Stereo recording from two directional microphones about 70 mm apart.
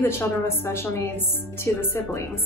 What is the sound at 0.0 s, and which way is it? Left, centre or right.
A woman's voice, left.